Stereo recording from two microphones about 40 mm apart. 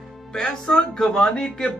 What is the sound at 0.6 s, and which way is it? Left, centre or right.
Speech, centre.